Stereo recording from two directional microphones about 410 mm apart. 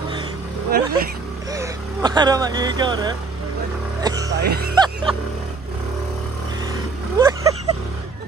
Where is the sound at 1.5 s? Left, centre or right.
Centre.